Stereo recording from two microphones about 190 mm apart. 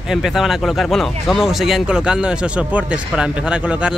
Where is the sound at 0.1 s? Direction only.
Centre (ahead or behind).